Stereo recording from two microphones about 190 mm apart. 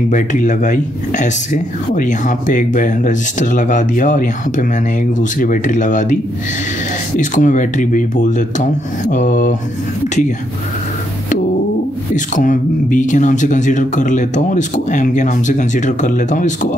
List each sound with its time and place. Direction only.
0.1 s speech: 40° left (ahead or behind)
7.2 s speech: 40° left (ahead or behind)
12.4 s speech: 40° left (ahead or behind)